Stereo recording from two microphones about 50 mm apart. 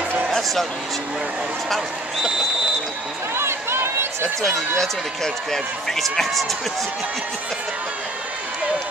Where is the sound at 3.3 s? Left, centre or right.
Right.